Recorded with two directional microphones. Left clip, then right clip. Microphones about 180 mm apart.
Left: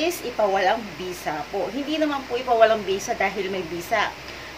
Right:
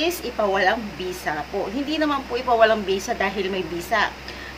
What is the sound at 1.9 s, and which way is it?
A woman's voice, 20° right (ahead or behind).